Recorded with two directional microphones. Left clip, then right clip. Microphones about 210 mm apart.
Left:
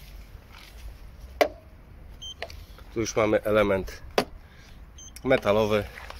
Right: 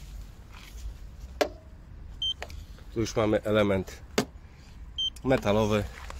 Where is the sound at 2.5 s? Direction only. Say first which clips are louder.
Left 2 dB; 5° right (ahead or behind).